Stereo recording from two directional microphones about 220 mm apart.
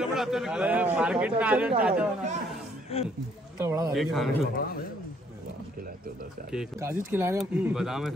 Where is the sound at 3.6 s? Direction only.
15° right (ahead or behind).